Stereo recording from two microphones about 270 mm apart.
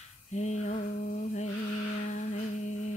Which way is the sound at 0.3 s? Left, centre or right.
Left.